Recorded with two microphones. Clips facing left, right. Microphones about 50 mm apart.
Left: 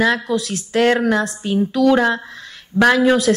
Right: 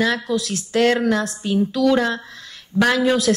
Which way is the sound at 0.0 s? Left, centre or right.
Centre.